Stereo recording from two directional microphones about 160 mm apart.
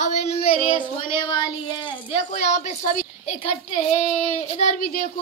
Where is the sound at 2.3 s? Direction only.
45° left (ahead or behind).